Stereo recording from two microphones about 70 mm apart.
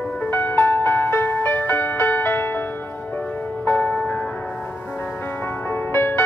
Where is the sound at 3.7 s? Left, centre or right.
Left.